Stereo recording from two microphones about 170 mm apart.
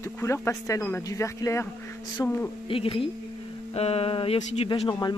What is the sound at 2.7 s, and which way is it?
Speech, 30° left (ahead or behind).